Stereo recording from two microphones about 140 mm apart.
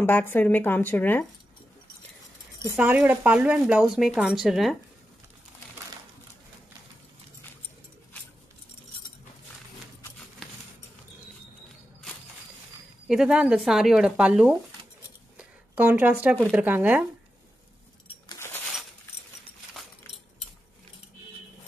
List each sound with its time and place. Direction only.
0.0 s speech: 15° left (ahead or behind)
2.7 s speech: 10° right (ahead or behind)
13.1 s speech: 5° right (ahead or behind)